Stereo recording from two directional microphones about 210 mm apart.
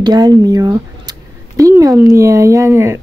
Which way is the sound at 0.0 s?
20° right (ahead or behind).